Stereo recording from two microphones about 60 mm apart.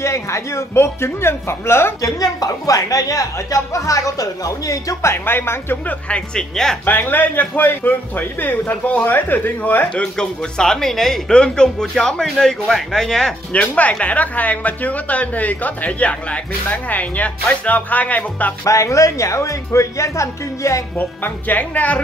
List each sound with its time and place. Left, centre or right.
0.0 s a man's voice: left
2.0 s speech: left
5.0 s a man's voice: left
5.9 s speech: centre
6.9 s a man's voice: left
10.1 s speech: centre
13.5 s speech: left
18.7 s speech: left
21.0 s speech: left